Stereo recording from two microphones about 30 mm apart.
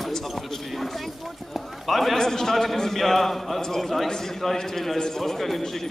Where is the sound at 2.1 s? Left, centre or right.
Centre.